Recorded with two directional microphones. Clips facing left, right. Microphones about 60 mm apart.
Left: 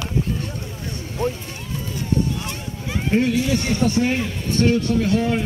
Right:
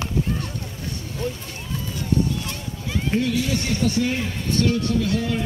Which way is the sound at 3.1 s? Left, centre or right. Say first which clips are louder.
Left 4 dB; left.